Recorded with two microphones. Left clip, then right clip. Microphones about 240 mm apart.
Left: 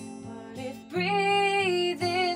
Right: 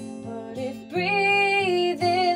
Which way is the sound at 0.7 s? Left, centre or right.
Left.